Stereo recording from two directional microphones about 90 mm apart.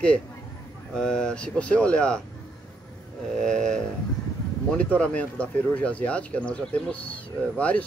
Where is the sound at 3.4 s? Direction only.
10° left (ahead or behind).